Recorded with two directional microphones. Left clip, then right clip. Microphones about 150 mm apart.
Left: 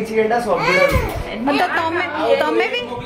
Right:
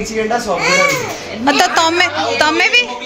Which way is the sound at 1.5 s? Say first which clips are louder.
Right 6 dB; 25° right (ahead or behind).